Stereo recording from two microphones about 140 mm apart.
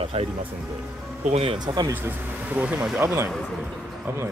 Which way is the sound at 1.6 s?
30° right (ahead or behind).